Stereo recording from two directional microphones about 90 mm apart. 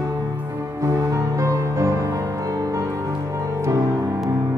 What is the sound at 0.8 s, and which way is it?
Music, 35° right (ahead or behind).